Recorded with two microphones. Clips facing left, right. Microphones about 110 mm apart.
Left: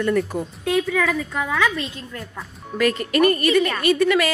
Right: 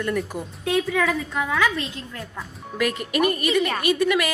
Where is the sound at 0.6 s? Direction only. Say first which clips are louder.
Left 1 dB; 25° right (ahead or behind).